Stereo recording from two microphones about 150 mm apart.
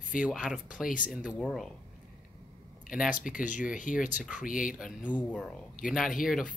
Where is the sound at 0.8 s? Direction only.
60° left (ahead or behind).